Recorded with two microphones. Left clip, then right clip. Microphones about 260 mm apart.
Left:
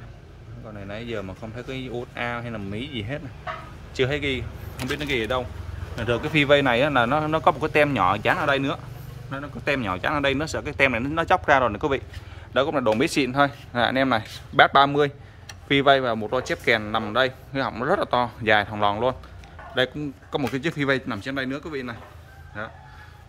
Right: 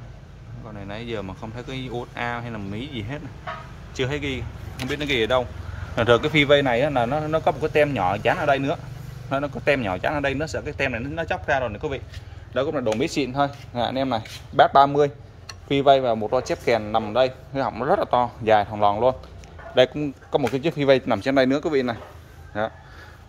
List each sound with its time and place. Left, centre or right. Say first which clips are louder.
0.7 s a man's voice: right 1 dB; centre; by 22.7 s right